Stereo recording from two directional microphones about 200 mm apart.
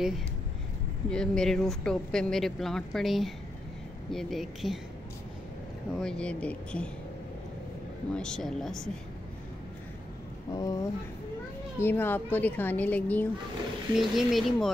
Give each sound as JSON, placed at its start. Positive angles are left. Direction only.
{"t": 1.1, "sound": "speech", "side_deg": 5}
{"t": 5.9, "sound": "speech", "side_deg": 5}
{"t": 8.1, "sound": "speech", "side_deg": 5}
{"t": 10.5, "sound": "a woman's voice", "side_deg": 20}